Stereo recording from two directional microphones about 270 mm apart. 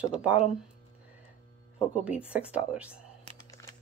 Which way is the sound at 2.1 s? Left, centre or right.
Centre.